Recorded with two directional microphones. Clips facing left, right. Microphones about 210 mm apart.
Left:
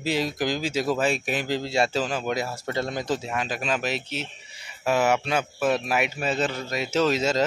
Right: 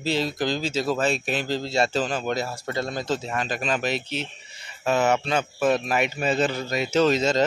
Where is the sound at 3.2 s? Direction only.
5° left (ahead or behind).